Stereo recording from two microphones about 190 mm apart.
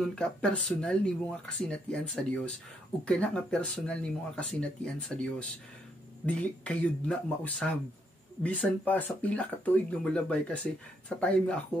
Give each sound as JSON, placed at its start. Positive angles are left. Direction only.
{"t": 0.0, "sound": "speech", "side_deg": 5}